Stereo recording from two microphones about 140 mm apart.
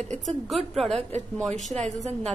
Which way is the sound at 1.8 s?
50° right (ahead or behind).